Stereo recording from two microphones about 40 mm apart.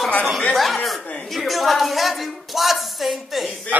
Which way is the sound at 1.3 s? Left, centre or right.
Centre.